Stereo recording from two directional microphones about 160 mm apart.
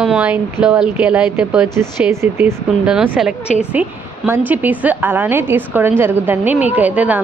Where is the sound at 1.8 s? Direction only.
15° right (ahead or behind).